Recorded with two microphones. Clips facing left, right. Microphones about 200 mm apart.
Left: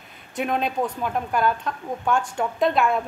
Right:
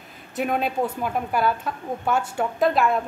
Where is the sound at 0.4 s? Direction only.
5° right (ahead or behind).